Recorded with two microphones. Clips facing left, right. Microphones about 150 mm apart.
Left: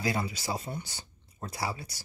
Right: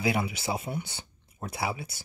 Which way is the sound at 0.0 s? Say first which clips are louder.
Right 3 dB; 15° right (ahead or behind).